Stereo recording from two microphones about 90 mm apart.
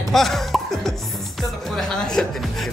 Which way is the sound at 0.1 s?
Centre (ahead or behind).